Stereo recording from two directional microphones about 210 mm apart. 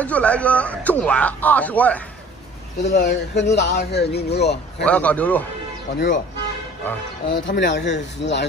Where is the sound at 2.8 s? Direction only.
55° left (ahead or behind).